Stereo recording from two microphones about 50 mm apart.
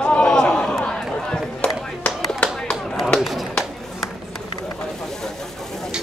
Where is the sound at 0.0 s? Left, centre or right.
Centre.